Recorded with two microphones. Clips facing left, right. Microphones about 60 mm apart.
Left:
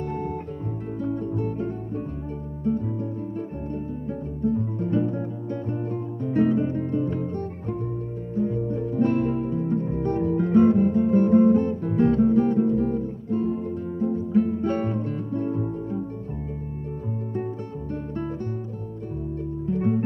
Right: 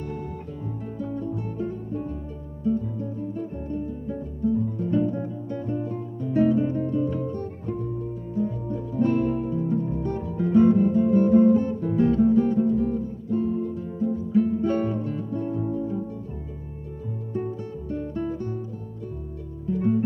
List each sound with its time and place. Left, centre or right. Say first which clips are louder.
1.0 s music: left 4 dB; left
4.5 s music: right 1 dB; left
8.4 s music: left 3 dB; left
19.7 s music: right 1 dB; left